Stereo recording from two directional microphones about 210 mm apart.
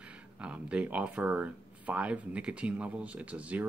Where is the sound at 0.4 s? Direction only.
5° right (ahead or behind).